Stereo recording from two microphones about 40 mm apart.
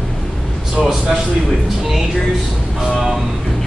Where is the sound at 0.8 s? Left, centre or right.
Centre.